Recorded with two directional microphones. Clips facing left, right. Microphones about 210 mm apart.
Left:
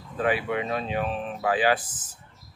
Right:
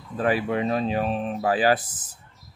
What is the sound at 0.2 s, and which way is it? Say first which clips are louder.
Speech: right 2 dB; 40° right (ahead or behind).